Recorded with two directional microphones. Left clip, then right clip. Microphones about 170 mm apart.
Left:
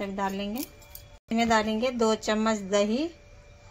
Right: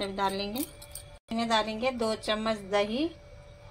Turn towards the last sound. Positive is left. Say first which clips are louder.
# left 3 dB
turn(degrees=55)  # may be behind; listen again after turning